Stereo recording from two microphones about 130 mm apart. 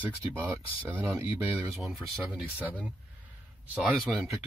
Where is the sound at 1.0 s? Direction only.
15° right (ahead or behind).